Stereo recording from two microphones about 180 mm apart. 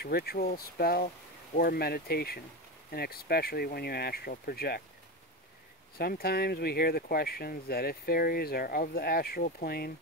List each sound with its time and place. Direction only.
0.0 s speech: 60° left (ahead or behind)
5.9 s speech: 60° left (ahead or behind)